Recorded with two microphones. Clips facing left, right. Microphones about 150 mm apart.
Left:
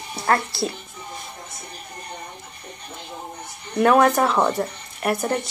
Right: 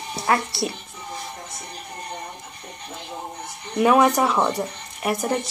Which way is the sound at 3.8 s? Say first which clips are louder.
Left 1 dB; 5° right (ahead or behind).